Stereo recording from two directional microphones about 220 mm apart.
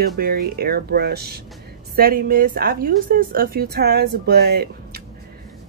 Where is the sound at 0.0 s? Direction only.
45° right (ahead or behind).